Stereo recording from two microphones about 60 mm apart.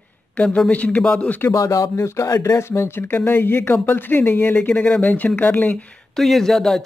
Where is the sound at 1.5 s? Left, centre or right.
Left.